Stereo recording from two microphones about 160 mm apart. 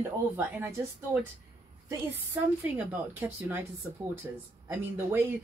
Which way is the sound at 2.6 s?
10° right (ahead or behind).